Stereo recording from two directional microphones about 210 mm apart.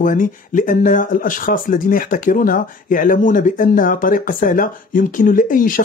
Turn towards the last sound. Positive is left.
turn(degrees=40)  # may be behind; listen again after turning